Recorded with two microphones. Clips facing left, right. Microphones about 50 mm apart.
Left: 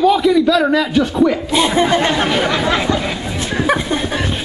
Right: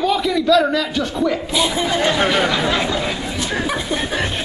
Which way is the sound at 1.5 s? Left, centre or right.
Left.